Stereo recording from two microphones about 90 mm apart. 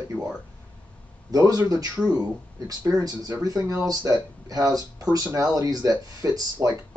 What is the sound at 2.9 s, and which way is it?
A man's voice, 45° right (ahead or behind).